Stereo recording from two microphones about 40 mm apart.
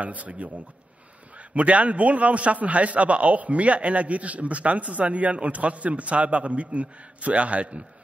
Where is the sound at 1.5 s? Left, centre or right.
Right.